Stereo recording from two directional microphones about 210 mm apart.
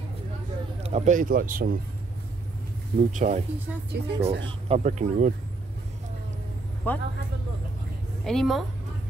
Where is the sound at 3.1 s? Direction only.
35° right (ahead or behind).